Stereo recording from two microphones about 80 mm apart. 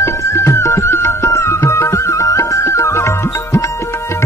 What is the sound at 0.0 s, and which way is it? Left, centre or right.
Music, left.